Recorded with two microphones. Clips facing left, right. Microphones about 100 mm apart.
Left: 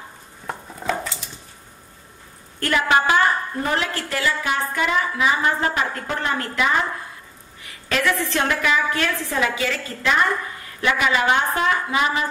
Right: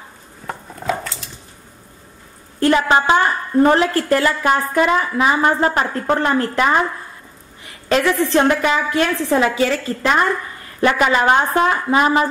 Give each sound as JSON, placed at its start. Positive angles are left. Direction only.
{"t": 0.5, "sound": "a sound", "side_deg": 0}
{"t": 2.6, "sound": "a woman's voice", "side_deg": -30}
{"t": 3.6, "sound": "a woman's voice", "side_deg": -40}
{"t": 7.9, "sound": "a woman's voice", "side_deg": -35}